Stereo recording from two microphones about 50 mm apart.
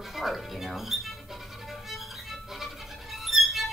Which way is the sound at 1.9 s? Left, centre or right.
Centre.